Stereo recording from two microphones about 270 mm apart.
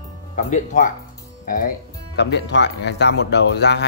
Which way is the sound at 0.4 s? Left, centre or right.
Left.